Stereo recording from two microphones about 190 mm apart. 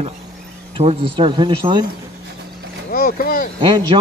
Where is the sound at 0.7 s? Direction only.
30° right (ahead or behind).